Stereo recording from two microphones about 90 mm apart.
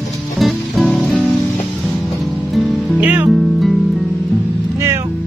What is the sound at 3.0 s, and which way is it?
Music, 15° right (ahead or behind).